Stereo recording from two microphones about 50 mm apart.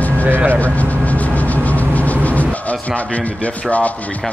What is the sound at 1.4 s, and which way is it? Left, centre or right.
Speech, left.